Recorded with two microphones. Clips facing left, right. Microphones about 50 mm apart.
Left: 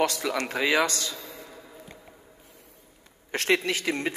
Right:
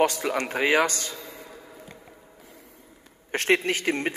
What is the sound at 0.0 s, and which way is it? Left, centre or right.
A man's voice, right.